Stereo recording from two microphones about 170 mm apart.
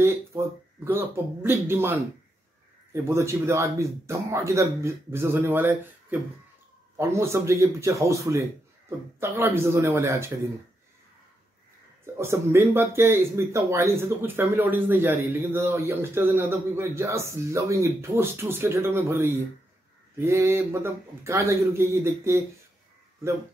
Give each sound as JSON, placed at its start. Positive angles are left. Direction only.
{"t": 0.0, "sound": "speech", "side_deg": -15}
{"t": 12.2, "sound": "speech", "side_deg": -15}